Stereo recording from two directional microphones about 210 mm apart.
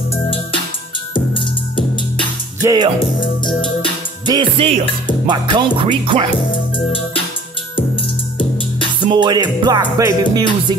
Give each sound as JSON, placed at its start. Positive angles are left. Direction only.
{"t": 0.1, "sound": "music", "side_deg": 25}
{"t": 2.6, "sound": "music", "side_deg": -15}
{"t": 4.3, "sound": "music", "side_deg": -25}
{"t": 6.5, "sound": "music", "side_deg": 25}
{"t": 8.4, "sound": "music", "side_deg": 25}
{"t": 9.0, "sound": "music", "side_deg": -20}